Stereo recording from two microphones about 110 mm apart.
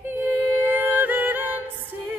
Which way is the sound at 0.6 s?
15° right (ahead or behind).